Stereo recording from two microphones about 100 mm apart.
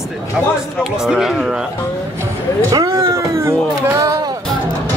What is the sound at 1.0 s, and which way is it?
Speech, 5° right (ahead or behind).